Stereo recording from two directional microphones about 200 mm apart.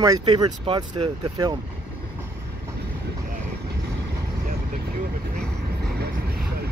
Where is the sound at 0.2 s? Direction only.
20° right (ahead or behind).